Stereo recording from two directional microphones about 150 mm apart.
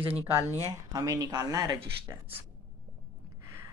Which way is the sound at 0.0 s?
15° right (ahead or behind).